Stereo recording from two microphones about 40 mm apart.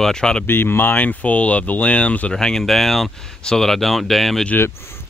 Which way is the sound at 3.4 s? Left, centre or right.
Centre.